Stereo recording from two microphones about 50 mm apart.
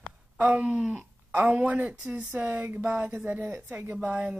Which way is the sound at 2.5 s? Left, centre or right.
Right.